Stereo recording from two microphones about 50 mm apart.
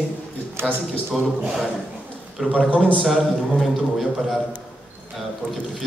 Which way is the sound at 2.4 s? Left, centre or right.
Centre.